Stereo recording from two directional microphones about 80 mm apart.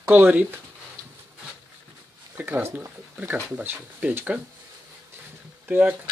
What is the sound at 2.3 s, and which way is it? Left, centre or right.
Speech, right.